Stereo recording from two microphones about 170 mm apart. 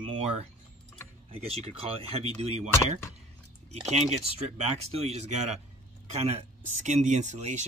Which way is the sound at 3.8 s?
40° right (ahead or behind).